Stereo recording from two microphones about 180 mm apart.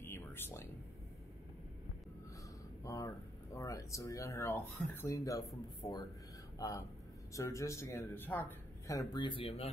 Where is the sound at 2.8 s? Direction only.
15° left (ahead or behind).